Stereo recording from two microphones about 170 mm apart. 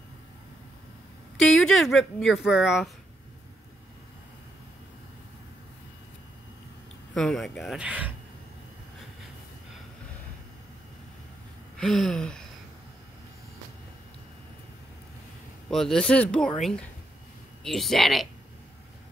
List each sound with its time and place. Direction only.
1.4 s speech: centre (ahead or behind)
7.2 s speech: centre (ahead or behind)
11.7 s a sound: centre (ahead or behind)
15.7 s speech: 5° left (ahead or behind)
17.6 s speech: centre (ahead or behind)